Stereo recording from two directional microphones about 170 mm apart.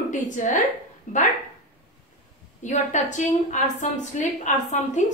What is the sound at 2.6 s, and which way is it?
A woman's voice, 45° left (ahead or behind).